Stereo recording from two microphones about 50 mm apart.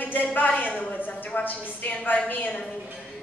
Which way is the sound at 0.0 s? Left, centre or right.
Left.